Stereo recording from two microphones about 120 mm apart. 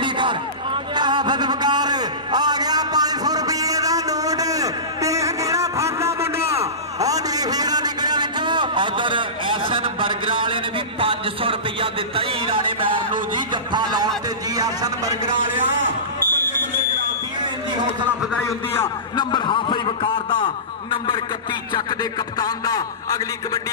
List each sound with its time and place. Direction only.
0.0 s a sound: 40° right (ahead or behind)
14.6 s speech: 30° right (ahead or behind)
19.1 s a man's voice: 40° left (ahead or behind)
22.4 s a man's voice: 30° left (ahead or behind)